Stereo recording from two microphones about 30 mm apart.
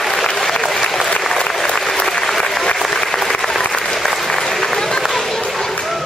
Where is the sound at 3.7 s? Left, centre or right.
Centre.